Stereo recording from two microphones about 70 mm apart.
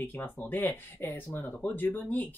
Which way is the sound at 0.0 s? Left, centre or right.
Left.